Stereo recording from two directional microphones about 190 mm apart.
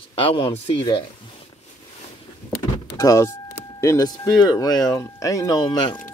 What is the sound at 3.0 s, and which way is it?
Speech, 15° left (ahead or behind).